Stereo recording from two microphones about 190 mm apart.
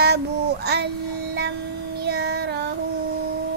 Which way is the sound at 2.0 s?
60° right (ahead or behind).